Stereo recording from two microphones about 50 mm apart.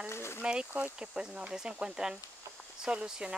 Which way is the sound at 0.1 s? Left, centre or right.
Left.